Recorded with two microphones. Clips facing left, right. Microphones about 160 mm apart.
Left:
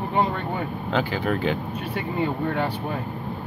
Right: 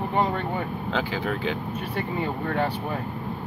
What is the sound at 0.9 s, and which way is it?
Speech, 55° left (ahead or behind).